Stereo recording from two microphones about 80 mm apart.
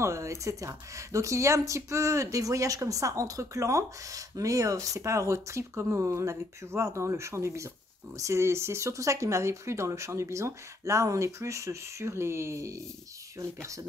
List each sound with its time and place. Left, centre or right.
0.0 s speech: right